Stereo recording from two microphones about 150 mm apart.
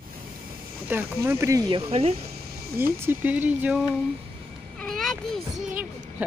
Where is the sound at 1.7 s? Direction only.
40° right (ahead or behind).